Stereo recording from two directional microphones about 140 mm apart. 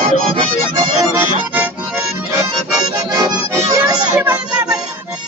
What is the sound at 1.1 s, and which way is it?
Music, 15° right (ahead or behind).